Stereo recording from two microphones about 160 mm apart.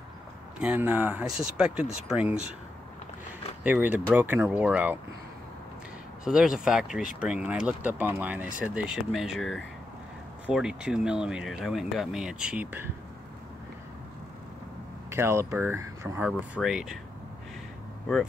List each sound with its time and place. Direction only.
0.6 s speech: 10° right (ahead or behind)
3.6 s speech: 10° right (ahead or behind)
6.2 s speech: 5° right (ahead or behind)
15.0 s speech: 15° right (ahead or behind)
16.6 s speech: 5° right (ahead or behind)